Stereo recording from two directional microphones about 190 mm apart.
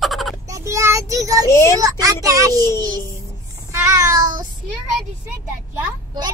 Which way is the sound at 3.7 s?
15° right (ahead or behind).